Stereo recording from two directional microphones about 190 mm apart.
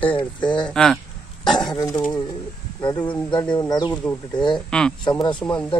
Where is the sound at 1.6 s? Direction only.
20° left (ahead or behind).